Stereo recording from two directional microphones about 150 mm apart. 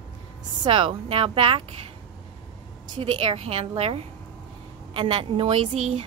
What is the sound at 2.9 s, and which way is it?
A woman's voice, 35° right (ahead or behind).